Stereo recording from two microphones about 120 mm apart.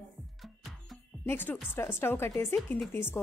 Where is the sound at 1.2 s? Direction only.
15° left (ahead or behind).